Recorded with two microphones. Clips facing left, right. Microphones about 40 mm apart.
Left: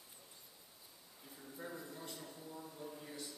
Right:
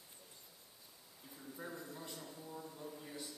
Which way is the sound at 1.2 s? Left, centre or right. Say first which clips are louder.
Right 1 dB; centre.